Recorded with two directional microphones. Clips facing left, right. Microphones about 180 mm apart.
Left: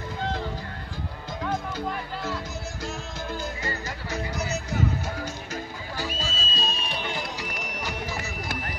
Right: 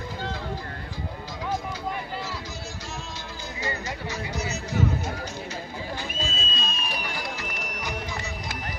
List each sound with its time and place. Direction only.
4.1 s music: 55° left (ahead or behind)
5.9 s a sound: 35° left (ahead or behind)
6.9 s music: 25° left (ahead or behind)